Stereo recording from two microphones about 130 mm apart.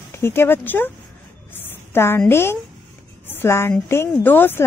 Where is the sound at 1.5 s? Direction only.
15° left (ahead or behind).